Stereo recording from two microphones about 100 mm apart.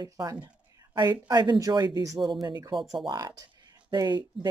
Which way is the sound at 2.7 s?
Centre (ahead or behind).